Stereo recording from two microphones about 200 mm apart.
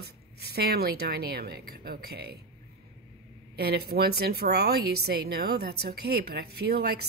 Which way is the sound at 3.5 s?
50° right (ahead or behind).